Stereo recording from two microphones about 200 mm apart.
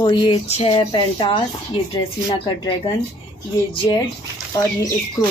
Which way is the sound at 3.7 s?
25° left (ahead or behind).